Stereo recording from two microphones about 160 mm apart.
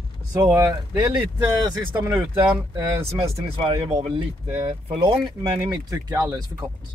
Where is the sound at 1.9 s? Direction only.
15° right (ahead or behind).